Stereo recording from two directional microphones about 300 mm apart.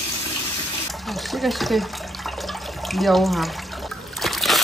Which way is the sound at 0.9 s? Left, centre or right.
Centre.